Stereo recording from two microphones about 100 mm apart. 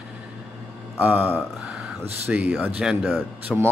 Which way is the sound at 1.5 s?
5° right (ahead or behind).